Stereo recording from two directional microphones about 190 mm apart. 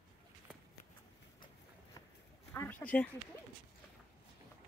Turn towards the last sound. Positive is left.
turn(degrees=10)  # may be behind; listen again after turning